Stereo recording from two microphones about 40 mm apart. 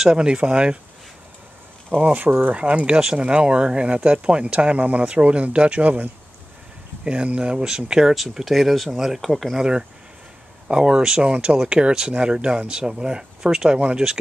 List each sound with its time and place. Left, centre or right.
0.1 s speech: right
2.0 s speech: right
7.2 s speech: right
8.1 s speech: centre
9.6 s speech: centre